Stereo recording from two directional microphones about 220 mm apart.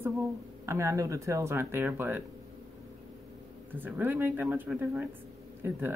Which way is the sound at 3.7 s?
10° right (ahead or behind).